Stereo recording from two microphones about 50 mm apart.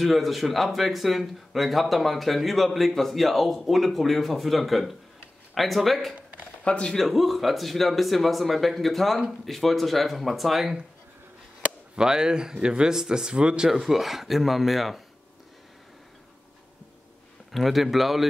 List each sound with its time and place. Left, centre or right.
0.0 s speech: centre
6.1 s a sound: right
6.6 s speech: left
7.1 s speech: centre
11.9 s speech: centre
13.7 s speech: centre
17.5 s speech: centre